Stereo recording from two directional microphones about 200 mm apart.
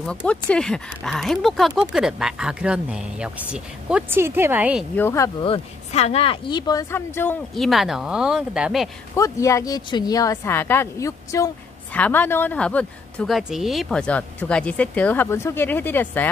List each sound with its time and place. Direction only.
0.0 s speech: 5° left (ahead or behind)
4.9 s speech: 15° left (ahead or behind)
5.4 s speech: 30° left (ahead or behind); by 7.3 s 10° left (ahead or behind)
7.5 s speech: centre (ahead or behind)
9.1 s speech: 15° left (ahead or behind)